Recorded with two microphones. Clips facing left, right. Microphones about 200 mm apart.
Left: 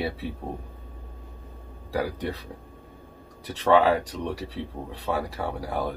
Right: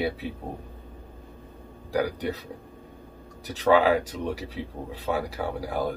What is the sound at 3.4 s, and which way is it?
Speech, centre (ahead or behind).